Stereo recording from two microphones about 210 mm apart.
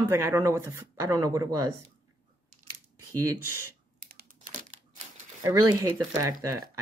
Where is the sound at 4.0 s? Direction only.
45° right (ahead or behind).